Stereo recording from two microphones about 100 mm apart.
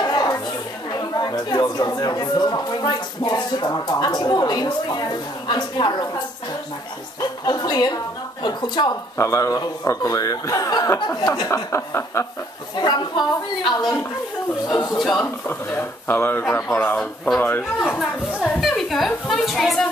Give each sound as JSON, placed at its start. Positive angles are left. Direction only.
{"t": 0.0, "sound": "chatter", "side_deg": 45}
{"t": 1.1, "sound": "speech", "side_deg": 40}
{"t": 9.1, "sound": "speech", "side_deg": 30}
{"t": 12.7, "sound": "speech", "side_deg": 45}
{"t": 14.7, "sound": "speech", "side_deg": 35}
{"t": 15.0, "sound": "a woman's voice", "side_deg": 0}
{"t": 15.2, "sound": "speech", "side_deg": 20}
{"t": 16.9, "sound": "speech", "side_deg": 10}
{"t": 17.9, "sound": "a woman's voice", "side_deg": 0}